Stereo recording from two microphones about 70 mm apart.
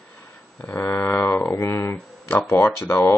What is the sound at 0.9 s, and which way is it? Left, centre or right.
Speech, left.